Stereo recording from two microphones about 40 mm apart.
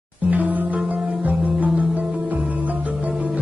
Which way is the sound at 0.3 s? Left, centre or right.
Right.